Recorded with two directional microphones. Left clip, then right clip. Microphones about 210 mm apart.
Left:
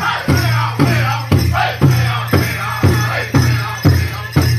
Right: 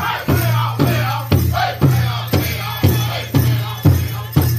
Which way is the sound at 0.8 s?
45° left (ahead or behind).